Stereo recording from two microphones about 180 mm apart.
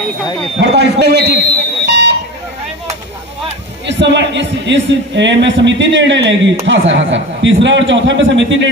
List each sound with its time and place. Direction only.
0.7 s a man's voice: 70° right (ahead or behind)
1.9 s alarm: 70° right (ahead or behind)
3.8 s a man's voice: 80° right